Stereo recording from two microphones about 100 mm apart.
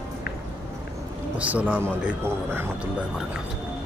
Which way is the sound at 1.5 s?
15° right (ahead or behind).